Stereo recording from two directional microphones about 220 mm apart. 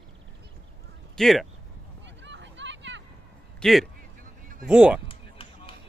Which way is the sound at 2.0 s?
55° right (ahead or behind).